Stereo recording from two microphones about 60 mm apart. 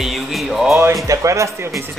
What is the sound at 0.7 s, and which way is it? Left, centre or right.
Speech, right.